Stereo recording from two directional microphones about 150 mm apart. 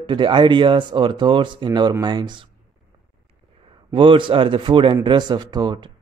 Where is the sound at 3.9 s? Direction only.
35° right (ahead or behind).